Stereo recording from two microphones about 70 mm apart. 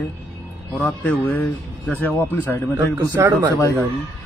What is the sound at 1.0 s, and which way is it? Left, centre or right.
Speech, left.